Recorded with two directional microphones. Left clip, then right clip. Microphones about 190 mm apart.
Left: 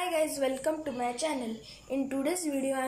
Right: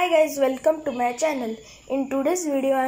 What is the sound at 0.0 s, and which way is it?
A woman's voice, 15° right (ahead or behind).